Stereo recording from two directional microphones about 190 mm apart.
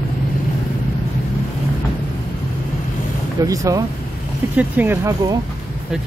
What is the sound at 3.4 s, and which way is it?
Speech, 20° right (ahead or behind).